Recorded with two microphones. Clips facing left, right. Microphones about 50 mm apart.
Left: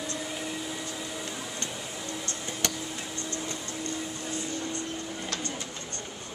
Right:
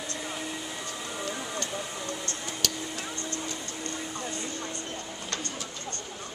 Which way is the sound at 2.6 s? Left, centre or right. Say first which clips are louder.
Left 1 dB; left.